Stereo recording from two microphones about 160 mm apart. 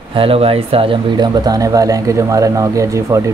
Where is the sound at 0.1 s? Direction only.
35° right (ahead or behind).